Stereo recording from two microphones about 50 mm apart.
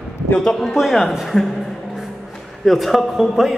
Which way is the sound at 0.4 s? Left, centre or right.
Centre.